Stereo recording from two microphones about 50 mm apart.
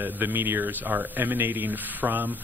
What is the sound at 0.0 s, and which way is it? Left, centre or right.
Speech, right.